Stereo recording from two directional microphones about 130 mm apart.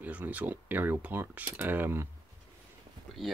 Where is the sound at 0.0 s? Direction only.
10° right (ahead or behind).